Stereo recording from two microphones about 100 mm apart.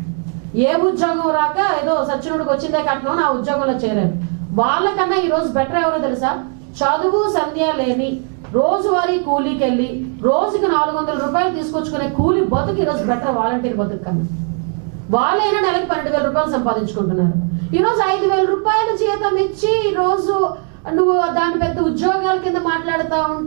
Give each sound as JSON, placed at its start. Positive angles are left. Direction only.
{"t": 0.6, "sound": "a woman's voice", "side_deg": -15}
{"t": 15.0, "sound": "a woman's voice", "side_deg": -15}